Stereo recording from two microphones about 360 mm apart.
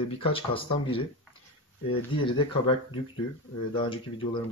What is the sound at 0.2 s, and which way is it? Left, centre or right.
Speech, centre.